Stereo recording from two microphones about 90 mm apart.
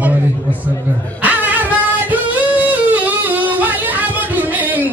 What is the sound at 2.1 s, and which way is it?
Singing, 20° right (ahead or behind).